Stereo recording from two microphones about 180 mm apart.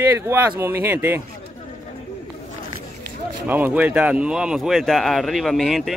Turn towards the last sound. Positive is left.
turn(degrees=0)  # may be behind; listen again after turning